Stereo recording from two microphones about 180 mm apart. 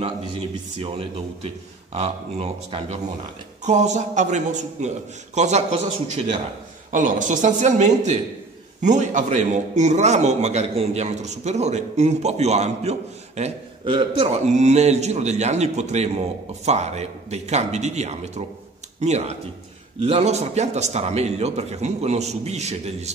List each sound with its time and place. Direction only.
0.7 s a man's voice: 30° right (ahead or behind)
14.5 s a man's voice: 40° right (ahead or behind)